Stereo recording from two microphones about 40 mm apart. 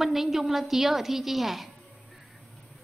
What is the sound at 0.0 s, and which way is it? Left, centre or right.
A woman's voice, centre.